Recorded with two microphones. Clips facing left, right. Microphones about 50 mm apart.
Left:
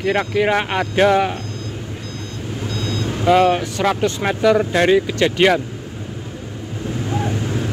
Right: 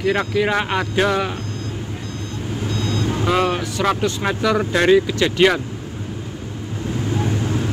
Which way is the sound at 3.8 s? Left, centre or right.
Left.